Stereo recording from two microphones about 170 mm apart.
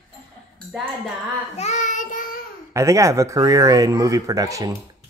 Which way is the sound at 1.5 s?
40° left (ahead or behind).